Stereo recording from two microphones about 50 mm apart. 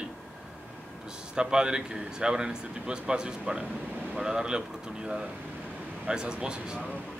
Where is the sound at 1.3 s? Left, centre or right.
Centre.